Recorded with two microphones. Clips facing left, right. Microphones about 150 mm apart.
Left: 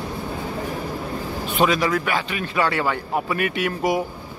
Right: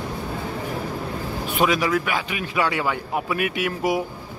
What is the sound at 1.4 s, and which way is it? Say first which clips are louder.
Speech: left 1 dB; 10° right (ahead or behind).